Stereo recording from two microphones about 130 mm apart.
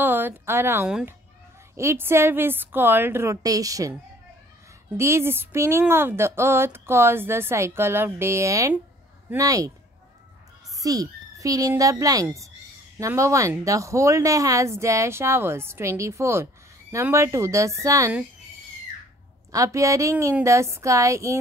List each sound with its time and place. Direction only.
0.0 s speech: 15° right (ahead or behind)
4.9 s a woman's voice: 20° right (ahead or behind)
10.8 s a woman's voice: 25° right (ahead or behind)
19.5 s a woman's voice: 25° right (ahead or behind)